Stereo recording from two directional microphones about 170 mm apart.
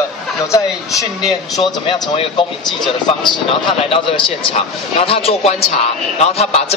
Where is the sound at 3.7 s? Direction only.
30° left (ahead or behind).